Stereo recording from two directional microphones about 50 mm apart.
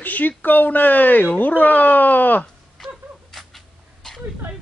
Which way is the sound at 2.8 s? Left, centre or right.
Centre.